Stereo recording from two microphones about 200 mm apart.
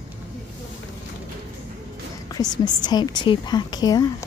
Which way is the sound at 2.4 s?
20° left (ahead or behind).